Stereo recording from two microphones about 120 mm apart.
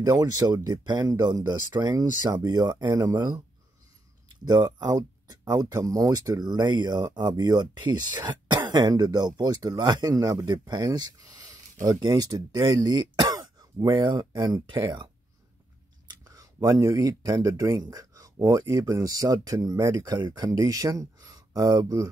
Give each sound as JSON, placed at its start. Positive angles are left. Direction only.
{"t": 0.0, "sound": "speech", "side_deg": -30}
{"t": 4.5, "sound": "speech", "side_deg": -30}
{"t": 16.3, "sound": "a sound", "side_deg": -30}
{"t": 17.1, "sound": "speech", "side_deg": -30}